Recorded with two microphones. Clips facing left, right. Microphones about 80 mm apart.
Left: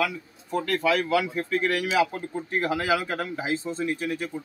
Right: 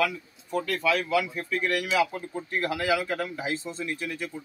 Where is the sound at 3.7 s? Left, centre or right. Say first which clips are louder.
Left 5 dB; left.